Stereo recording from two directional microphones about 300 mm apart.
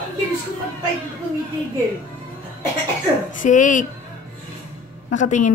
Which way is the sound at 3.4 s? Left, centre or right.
Left.